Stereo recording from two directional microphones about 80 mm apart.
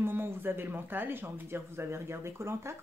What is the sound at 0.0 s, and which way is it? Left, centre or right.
Speech, right.